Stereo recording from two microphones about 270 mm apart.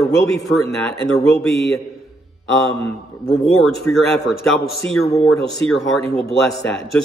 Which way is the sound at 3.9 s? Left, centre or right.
Left.